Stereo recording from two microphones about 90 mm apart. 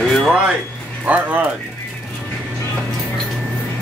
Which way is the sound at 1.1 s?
20° right (ahead or behind).